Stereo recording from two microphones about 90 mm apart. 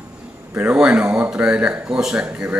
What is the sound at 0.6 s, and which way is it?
A man's voice, 15° right (ahead or behind).